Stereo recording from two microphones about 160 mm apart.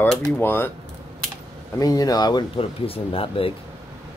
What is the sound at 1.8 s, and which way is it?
Speech, 20° left (ahead or behind).